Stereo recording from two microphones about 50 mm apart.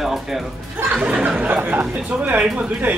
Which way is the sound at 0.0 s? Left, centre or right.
Centre.